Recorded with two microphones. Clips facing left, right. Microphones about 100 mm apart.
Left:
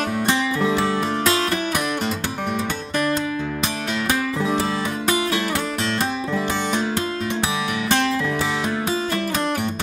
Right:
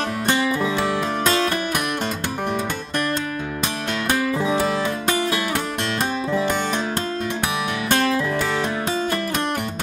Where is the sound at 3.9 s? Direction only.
Centre (ahead or behind).